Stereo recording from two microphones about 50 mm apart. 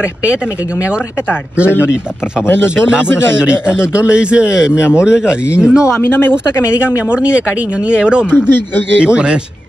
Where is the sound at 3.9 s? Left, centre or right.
Right.